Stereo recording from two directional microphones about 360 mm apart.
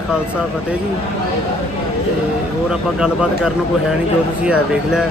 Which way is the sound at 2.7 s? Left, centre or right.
Centre.